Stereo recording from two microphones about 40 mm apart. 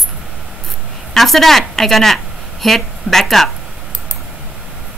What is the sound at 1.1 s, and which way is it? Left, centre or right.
A woman's voice, centre.